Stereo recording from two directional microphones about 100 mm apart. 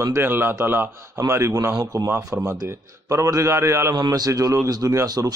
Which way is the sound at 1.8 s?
40° right (ahead or behind).